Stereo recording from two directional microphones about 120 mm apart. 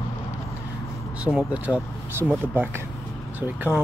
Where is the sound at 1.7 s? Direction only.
15° left (ahead or behind).